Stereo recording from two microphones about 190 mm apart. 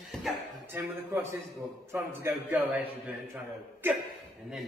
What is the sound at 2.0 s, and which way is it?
Speech, 10° right (ahead or behind).